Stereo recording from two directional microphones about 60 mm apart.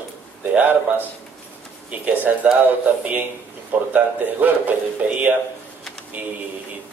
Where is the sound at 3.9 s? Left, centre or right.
Right.